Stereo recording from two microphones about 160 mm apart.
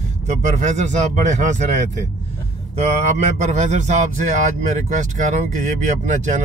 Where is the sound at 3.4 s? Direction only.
45° right (ahead or behind).